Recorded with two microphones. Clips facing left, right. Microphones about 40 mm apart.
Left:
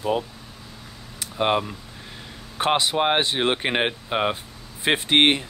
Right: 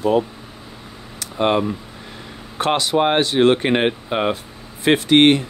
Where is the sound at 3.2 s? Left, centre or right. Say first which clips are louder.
Right 7 dB; centre.